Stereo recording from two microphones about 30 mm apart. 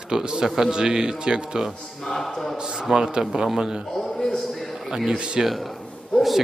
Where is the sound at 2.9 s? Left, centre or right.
Right.